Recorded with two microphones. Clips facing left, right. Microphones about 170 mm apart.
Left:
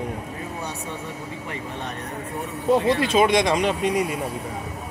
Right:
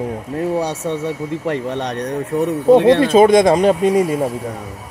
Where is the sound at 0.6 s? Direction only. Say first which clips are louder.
Right 11 dB; 80° right.